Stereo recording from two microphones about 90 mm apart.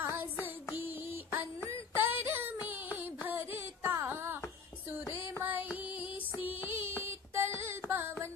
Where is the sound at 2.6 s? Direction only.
20° right (ahead or behind).